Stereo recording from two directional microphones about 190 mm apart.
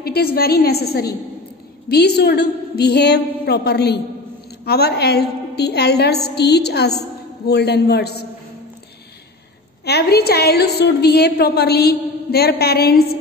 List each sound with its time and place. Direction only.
0.0 s a woman's voice: 55° left (ahead or behind)
9.8 s a woman's voice: 55° left (ahead or behind)